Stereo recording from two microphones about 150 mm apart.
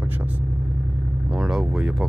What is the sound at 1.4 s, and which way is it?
Speech, 5° right (ahead or behind).